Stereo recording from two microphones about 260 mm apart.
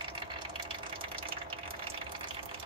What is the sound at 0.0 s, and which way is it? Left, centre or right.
Water, centre.